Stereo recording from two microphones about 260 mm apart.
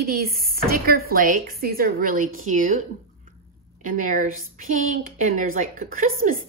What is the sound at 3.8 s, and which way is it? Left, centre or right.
A woman's voice, right.